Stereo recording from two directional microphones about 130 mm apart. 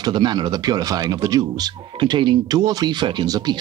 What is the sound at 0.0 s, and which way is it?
Speech, 35° right (ahead or behind).